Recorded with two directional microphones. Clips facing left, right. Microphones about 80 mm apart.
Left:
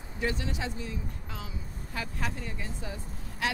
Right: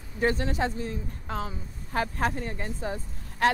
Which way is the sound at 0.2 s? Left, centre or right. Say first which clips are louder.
Right 7 dB; right.